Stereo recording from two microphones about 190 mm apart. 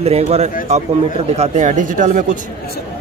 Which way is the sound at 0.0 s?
35° right (ahead or behind).